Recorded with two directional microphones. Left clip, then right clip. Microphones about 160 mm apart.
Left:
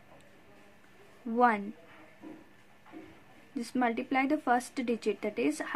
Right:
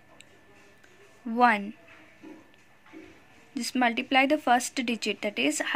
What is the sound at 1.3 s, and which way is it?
Speech, 20° right (ahead or behind).